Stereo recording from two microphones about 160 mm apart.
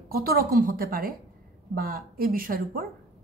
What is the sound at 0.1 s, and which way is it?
Speech, 65° right (ahead or behind).